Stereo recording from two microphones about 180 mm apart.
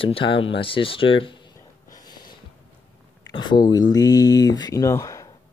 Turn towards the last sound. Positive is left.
turn(degrees=20)  # may be behind; listen again after turning